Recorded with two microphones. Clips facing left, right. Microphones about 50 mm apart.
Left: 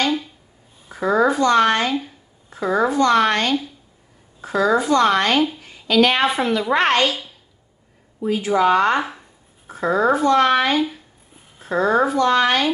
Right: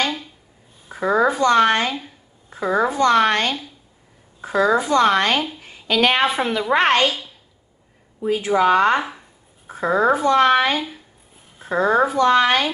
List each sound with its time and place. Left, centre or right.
0.8 s speech: centre
5.6 s a sound: right
6.2 s speech: centre
8.2 s speech: right
11.5 s speech: centre